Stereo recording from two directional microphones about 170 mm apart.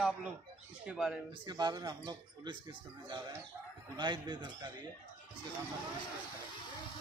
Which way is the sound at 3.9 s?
25° right (ahead or behind).